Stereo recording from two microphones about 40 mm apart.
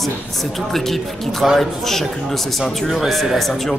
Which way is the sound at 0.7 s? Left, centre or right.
Centre.